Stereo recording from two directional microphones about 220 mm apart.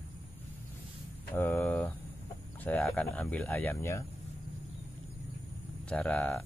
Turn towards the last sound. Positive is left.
turn(degrees=5)  # may be behind; listen again after turning